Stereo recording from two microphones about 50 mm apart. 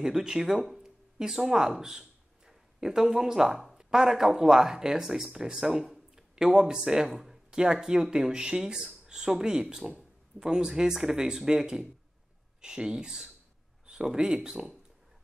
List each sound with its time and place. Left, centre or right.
0.0 s speech: centre